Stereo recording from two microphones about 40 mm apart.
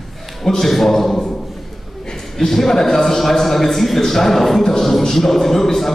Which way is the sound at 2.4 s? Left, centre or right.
Centre.